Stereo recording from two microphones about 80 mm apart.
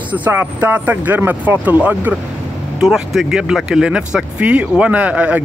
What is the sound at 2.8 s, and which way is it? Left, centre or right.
Speech, centre.